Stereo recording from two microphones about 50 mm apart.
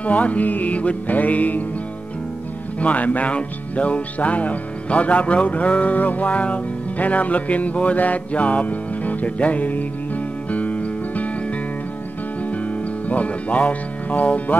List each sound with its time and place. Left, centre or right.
0.0 s music: left
2.8 s speech: left
10.5 s music: left
13.1 s speech: left